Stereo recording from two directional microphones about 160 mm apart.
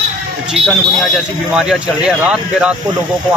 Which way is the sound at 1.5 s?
5° right (ahead or behind).